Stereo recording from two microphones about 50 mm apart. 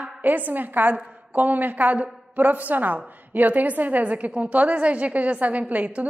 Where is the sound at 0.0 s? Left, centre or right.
Right.